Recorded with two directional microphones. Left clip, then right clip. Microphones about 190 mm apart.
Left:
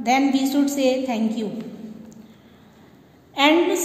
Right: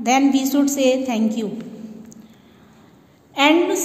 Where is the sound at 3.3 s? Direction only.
50° right (ahead or behind).